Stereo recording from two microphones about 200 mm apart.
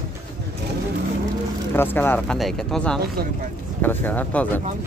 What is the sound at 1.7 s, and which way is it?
Speech, 10° left (ahead or behind).